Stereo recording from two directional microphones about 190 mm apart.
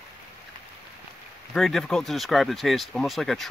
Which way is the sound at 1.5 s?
Centre (ahead or behind).